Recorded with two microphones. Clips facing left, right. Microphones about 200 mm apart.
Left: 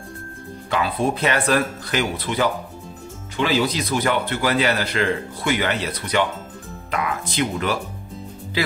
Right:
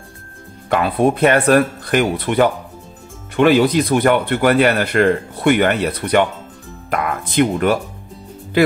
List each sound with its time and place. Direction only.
0.7 s speech: 55° right (ahead or behind)